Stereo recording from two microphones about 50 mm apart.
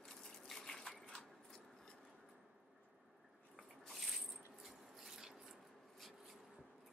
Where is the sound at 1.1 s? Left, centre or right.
Centre.